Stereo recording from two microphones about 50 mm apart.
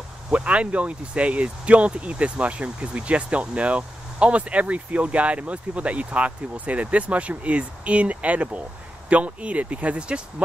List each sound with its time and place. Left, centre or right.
0.3 s speech: right